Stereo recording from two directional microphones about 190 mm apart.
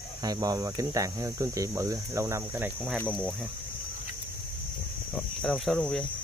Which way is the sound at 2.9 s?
5° left (ahead or behind).